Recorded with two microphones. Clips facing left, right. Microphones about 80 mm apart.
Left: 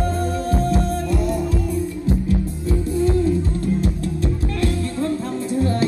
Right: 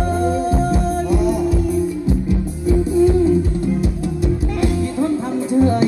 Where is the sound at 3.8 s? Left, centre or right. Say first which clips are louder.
Right 2 dB; centre.